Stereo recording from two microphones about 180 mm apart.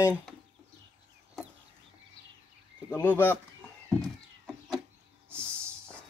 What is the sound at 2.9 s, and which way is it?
Speech, 10° left (ahead or behind).